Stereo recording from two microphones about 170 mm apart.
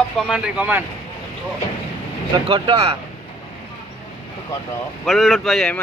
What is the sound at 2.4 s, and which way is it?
Speech, 30° right (ahead or behind).